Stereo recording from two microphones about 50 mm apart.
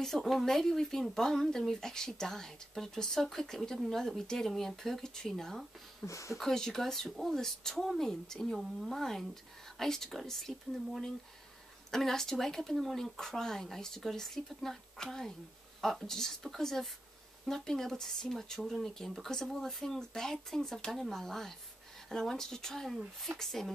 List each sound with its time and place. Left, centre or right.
0.0 s speech: centre
6.0 s speech: left
6.3 s speech: centre